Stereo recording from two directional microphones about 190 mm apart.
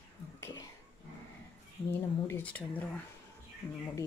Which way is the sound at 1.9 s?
10° left (ahead or behind).